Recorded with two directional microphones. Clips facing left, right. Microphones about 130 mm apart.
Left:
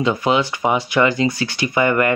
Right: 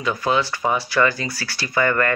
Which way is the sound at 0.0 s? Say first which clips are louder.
Left 4 dB; 20° left (ahead or behind).